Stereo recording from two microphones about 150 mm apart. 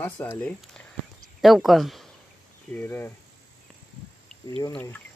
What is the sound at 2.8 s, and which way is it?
Speech, 15° left (ahead or behind).